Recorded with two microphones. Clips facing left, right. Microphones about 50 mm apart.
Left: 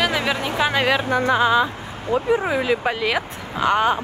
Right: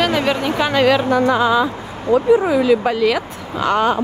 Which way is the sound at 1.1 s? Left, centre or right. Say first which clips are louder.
Right 3 dB; left.